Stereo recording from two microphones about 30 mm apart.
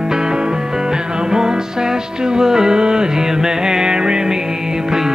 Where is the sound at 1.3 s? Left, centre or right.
Right.